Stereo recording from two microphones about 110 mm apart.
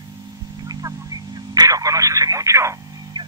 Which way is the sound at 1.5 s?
35° right (ahead or behind).